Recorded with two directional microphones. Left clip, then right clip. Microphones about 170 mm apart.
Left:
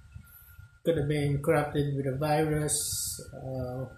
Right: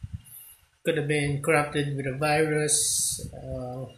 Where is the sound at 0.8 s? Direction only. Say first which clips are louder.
Right 2 dB; 10° left (ahead or behind).